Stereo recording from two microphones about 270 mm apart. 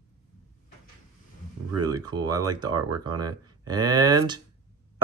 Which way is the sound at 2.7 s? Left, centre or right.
Right.